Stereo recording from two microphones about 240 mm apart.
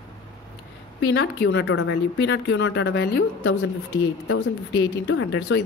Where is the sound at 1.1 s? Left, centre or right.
Left.